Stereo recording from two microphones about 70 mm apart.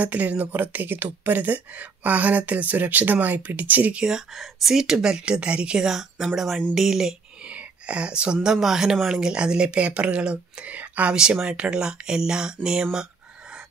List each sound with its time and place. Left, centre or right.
0.0 s speech: right
4.4 s a woman's voice: centre; by 11.1 s right
11.1 s a woman's voice: centre